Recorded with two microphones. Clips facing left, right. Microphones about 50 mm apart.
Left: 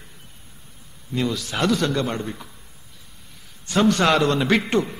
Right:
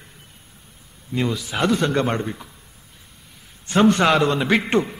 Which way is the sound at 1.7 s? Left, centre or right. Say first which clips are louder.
Right 5 dB; right.